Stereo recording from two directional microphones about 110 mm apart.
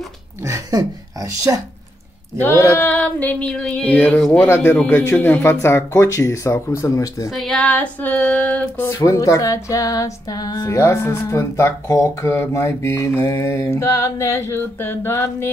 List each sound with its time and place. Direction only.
0.5 s speech: 30° right (ahead or behind)
2.7 s female singing: 15° left (ahead or behind)
4.3 s music: 20° left (ahead or behind)
7.2 s speech: centre (ahead or behind)
7.6 s female singing: 15° left (ahead or behind)
8.8 s music: 30° left (ahead or behind)